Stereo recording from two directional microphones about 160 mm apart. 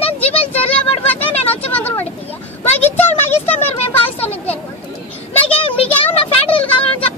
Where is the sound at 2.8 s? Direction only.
10° left (ahead or behind).